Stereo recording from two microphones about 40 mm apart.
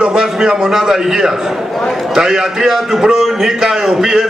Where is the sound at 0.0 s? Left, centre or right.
Centre.